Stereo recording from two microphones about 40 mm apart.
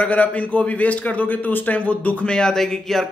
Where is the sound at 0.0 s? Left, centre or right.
Left.